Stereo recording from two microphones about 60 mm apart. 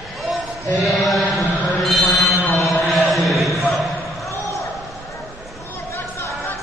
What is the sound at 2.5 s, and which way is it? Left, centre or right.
Mantra, centre.